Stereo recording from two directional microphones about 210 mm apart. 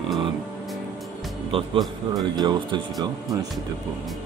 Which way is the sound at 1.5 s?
25° right (ahead or behind).